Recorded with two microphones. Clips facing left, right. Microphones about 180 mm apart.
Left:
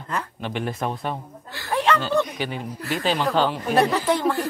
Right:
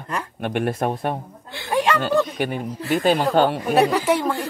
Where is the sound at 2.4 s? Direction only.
55° right (ahead or behind).